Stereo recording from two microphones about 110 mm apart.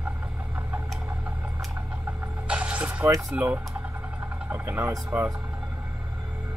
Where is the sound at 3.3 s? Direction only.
10° right (ahead or behind).